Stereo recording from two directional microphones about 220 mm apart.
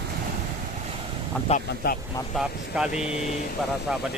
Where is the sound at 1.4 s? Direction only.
35° left (ahead or behind).